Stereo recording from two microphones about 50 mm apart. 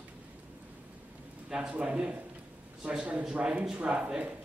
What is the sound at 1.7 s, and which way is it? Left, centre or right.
A man's voice, right.